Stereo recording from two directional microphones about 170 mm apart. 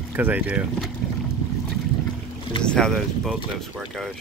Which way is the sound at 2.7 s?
5° left (ahead or behind).